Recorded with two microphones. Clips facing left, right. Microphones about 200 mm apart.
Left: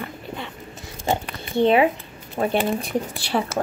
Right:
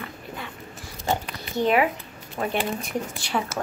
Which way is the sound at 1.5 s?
30° left (ahead or behind).